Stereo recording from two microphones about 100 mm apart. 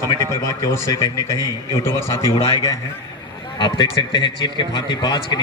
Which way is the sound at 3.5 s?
55° left (ahead or behind).